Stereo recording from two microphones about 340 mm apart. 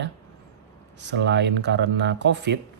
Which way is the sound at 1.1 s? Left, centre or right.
Right.